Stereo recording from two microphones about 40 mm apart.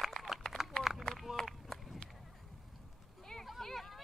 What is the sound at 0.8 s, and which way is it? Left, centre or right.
Run, centre.